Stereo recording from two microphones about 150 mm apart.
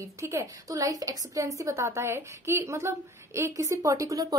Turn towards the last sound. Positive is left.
turn(degrees=-25)  # may be behind; listen again after turning